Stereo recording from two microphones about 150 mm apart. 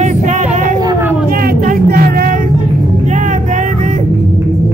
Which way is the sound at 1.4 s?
90° right.